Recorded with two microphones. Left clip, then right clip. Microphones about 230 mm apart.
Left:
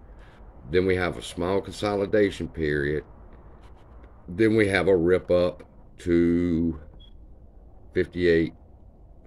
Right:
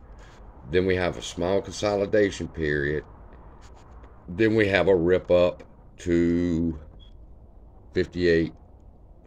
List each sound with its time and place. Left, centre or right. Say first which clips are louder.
0.7 s speech: even; centre
7.9 s speech: even; centre